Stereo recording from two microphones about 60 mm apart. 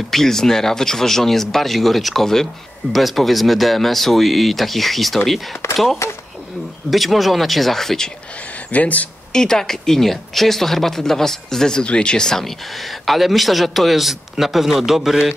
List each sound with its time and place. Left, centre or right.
0.1 s speech: centre
5.6 s speech: left
6.9 s speech: centre
8.7 s speech: left
9.3 s speech: centre